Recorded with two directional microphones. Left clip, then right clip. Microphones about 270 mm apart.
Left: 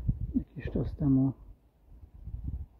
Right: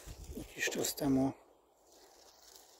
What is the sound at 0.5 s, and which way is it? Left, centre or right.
Speech, centre.